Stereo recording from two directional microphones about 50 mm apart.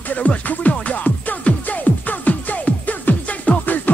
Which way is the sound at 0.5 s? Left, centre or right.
Left.